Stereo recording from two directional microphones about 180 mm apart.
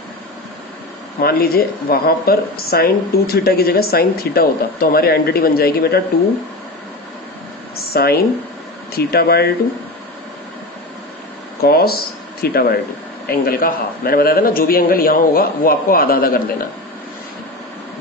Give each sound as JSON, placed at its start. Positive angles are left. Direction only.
{"t": 1.2, "sound": "a woman's voice", "side_deg": 55}
{"t": 7.7, "sound": "a sound", "side_deg": 60}
{"t": 8.9, "sound": "a woman's voice", "side_deg": 60}
{"t": 11.6, "sound": "a woman's voice", "side_deg": 60}